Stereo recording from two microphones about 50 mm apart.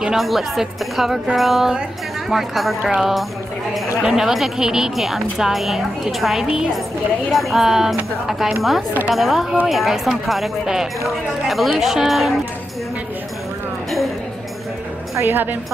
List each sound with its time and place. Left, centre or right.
0.2 s a woman's voice: centre
15.1 s a woman's voice: right